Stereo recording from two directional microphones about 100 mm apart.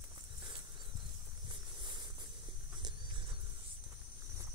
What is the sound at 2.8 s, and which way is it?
Horse, 50° right (ahead or behind).